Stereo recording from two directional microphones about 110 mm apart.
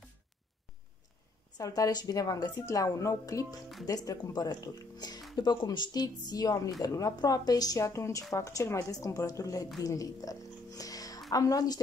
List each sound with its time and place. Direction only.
1.6 s a woman's voice: 35° left (ahead or behind)